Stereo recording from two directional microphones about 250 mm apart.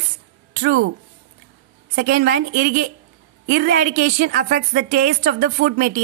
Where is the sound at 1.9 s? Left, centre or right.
Right.